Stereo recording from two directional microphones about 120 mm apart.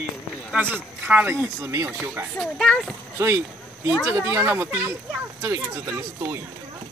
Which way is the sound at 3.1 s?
20° right (ahead or behind).